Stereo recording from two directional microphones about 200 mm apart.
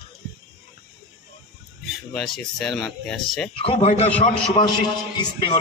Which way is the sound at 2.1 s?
Centre (ahead or behind).